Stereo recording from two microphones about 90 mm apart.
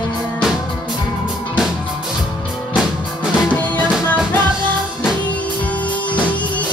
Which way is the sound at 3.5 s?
15° left (ahead or behind).